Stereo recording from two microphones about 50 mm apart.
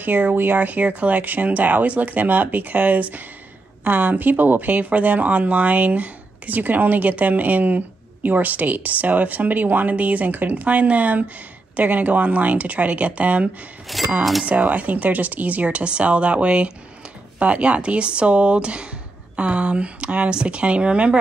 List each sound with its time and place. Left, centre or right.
0.0 s speech: right
13.9 s speech: centre
14.4 s speech: right